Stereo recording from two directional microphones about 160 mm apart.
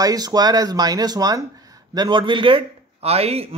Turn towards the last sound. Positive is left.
turn(degrees=-40)  # may be behind; listen again after turning